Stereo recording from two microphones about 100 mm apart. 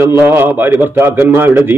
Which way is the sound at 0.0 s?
25° right (ahead or behind).